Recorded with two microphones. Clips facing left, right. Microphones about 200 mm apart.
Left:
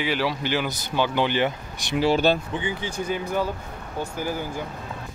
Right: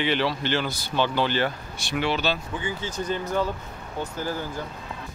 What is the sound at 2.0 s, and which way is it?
Speech, 45° left (ahead or behind).